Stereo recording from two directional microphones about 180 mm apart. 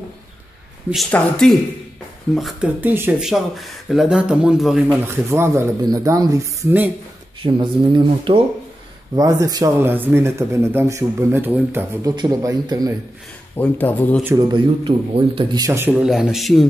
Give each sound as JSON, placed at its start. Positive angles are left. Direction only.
{"t": 1.1, "sound": "speech", "side_deg": 5}
{"t": 5.0, "sound": "speech", "side_deg": -15}
{"t": 7.4, "sound": "speech", "side_deg": -25}
{"t": 13.6, "sound": "speech", "side_deg": 10}
{"t": 14.5, "sound": "speech", "side_deg": -30}